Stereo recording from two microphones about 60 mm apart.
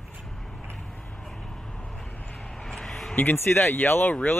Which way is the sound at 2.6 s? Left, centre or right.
Centre.